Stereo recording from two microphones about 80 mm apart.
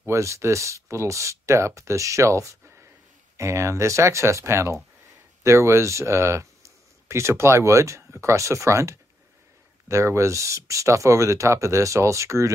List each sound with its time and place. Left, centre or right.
0.0 s speech: right